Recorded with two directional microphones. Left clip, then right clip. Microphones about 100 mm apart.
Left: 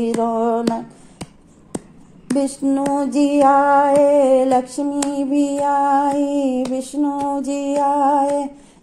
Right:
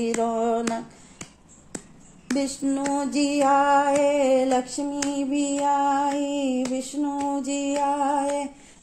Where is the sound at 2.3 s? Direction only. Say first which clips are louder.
Left 7 dB; 35° left (ahead or behind).